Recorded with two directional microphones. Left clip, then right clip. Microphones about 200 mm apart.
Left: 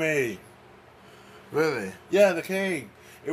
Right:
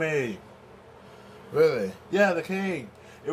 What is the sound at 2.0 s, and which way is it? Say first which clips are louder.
Speech: left 3 dB; 40° left (ahead or behind).